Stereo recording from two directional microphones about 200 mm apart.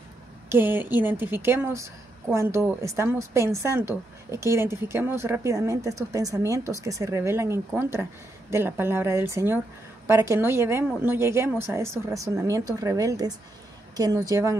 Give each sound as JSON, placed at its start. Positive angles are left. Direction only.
{"t": 0.5, "sound": "a woman's voice", "side_deg": -10}